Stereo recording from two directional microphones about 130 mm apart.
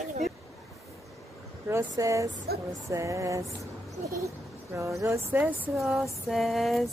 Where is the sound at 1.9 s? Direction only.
25° right (ahead or behind).